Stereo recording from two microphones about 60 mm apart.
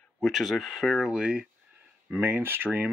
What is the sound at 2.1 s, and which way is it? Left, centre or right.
Speech, right.